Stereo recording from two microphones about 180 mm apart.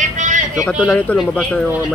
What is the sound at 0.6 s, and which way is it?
Speech, centre (ahead or behind).